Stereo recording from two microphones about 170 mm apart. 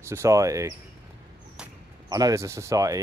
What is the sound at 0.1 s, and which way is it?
Speech, 20° right (ahead or behind).